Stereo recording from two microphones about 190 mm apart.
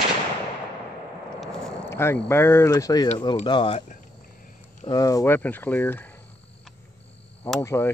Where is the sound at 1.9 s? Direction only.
15° left (ahead or behind).